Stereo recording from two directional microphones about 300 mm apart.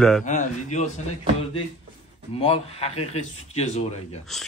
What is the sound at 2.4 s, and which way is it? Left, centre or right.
Speech, centre.